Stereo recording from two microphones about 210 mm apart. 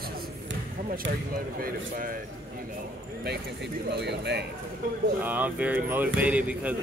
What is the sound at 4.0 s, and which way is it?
Speech, 55° right (ahead or behind).